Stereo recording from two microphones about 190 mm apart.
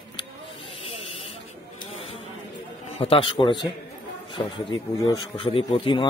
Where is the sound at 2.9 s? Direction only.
30° left (ahead or behind).